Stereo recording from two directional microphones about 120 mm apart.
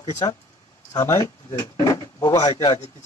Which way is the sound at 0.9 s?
25° left (ahead or behind).